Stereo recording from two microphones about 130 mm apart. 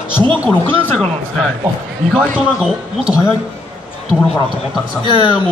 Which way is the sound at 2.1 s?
10° right (ahead or behind).